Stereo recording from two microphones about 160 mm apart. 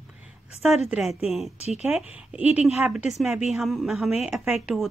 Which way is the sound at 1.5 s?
40° left (ahead or behind).